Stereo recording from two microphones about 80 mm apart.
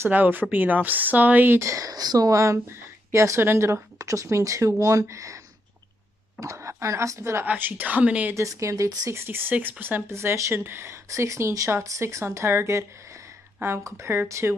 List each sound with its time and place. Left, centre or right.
0.0 s speech: right
1.6 s speech: right
6.4 s speech: right
7.4 s speech: right
8.4 s speech: right
9.2 s speech: right
13.8 s speech: right